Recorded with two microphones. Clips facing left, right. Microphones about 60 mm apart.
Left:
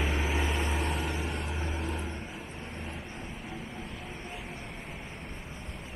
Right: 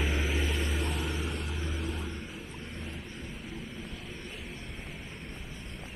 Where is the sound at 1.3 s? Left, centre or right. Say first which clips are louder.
Left 2 dB; left.